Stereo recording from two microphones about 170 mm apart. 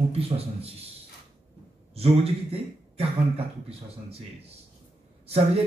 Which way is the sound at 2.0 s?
35° right (ahead or behind).